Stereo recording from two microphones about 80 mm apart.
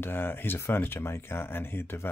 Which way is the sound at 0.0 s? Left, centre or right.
Left.